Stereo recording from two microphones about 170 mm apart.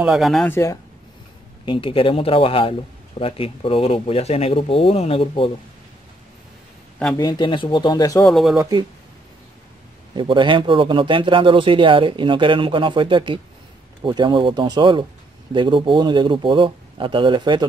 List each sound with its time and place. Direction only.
0.0 s speech: centre (ahead or behind)
0.5 s speech: 15° left (ahead or behind)
1.7 s speech: 30° left (ahead or behind)
7.2 s speech: 25° left (ahead or behind)
8.3 s speech: centre (ahead or behind)
8.5 s speech: 20° right (ahead or behind)
10.1 s speech: 30° right (ahead or behind)